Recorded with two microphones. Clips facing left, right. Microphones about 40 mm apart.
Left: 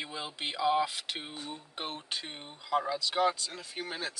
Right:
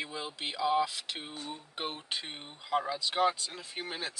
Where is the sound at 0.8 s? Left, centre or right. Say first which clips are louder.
Left 1 dB; left.